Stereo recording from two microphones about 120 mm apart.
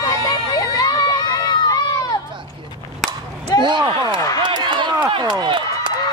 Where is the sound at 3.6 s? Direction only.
40° right (ahead or behind).